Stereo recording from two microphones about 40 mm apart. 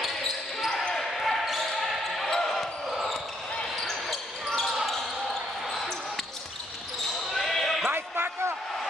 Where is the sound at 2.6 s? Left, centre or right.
Centre.